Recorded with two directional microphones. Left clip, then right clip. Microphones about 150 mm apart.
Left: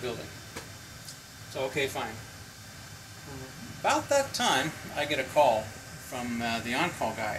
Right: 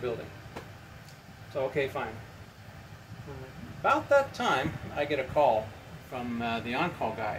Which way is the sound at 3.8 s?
5° right (ahead or behind).